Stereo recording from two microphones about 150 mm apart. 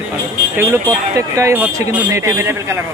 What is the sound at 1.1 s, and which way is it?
Speech, 15° right (ahead or behind).